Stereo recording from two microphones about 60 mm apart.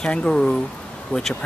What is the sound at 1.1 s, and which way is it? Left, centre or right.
Speech, left.